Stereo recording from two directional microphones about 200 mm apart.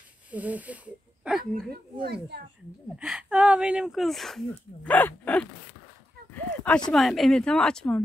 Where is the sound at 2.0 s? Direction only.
55° right (ahead or behind).